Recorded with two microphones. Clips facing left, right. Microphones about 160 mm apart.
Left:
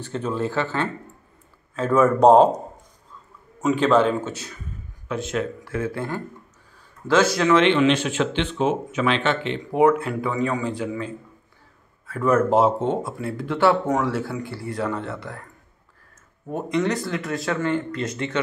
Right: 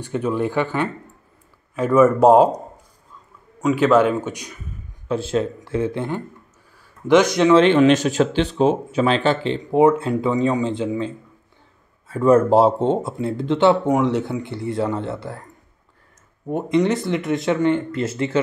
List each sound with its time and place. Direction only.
0.0 s speech: 15° right (ahead or behind)
2.0 s speech: 10° right (ahead or behind)
3.7 s speech: 10° right (ahead or behind)
5.0 s speech: 30° right (ahead or behind)
7.5 s speech: 40° right (ahead or behind)
9.6 s speech: 25° right (ahead or behind)
16.4 s speech: 25° right (ahead or behind)